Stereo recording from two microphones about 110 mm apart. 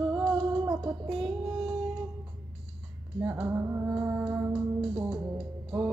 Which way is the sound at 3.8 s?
10° right (ahead or behind).